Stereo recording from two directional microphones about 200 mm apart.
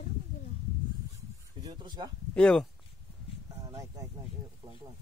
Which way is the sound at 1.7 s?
20° right (ahead or behind).